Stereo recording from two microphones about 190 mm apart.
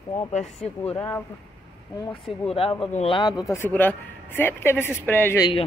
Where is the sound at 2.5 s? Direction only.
30° left (ahead or behind); by 5.4 s 10° left (ahead or behind).